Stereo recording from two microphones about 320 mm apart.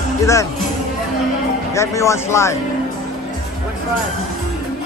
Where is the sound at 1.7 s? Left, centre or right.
Centre.